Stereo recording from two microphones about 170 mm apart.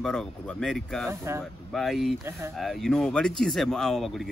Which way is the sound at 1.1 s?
15° right (ahead or behind).